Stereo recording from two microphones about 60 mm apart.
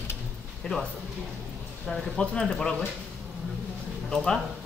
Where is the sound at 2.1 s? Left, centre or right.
Centre.